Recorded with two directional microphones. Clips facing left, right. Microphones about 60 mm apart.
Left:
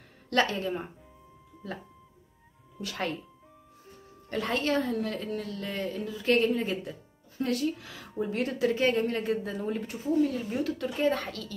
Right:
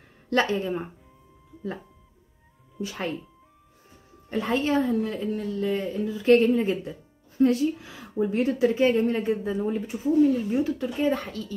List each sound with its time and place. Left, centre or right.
0.3 s a woman's voice: right
3.9 s a woman's voice: centre
9.6 s speech: centre